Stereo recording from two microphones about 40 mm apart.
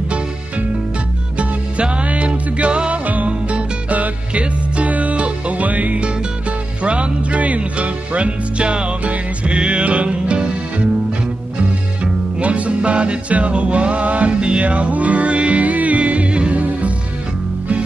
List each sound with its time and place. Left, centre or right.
1.4 s music: right
12.0 s music: right